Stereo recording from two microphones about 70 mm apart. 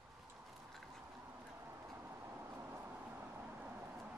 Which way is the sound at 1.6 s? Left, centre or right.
Right.